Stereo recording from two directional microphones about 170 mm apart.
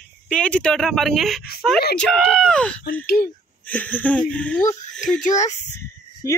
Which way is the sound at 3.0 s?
65° left (ahead or behind).